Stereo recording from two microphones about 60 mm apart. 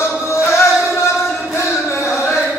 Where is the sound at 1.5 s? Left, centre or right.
Left.